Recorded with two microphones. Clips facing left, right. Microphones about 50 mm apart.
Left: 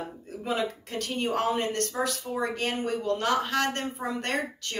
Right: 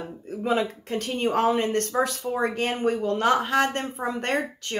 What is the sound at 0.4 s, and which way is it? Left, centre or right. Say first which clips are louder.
Speech: right 5 dB; right.